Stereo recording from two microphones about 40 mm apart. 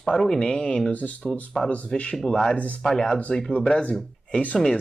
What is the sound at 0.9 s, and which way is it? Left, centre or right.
Speech, left.